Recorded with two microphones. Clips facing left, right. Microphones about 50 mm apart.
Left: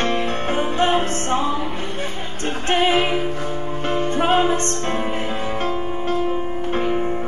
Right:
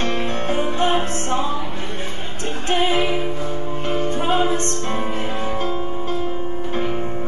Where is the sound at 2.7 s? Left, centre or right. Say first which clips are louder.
Left 2 dB; left.